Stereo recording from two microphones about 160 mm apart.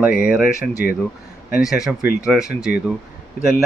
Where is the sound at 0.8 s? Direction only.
70° left (ahead or behind).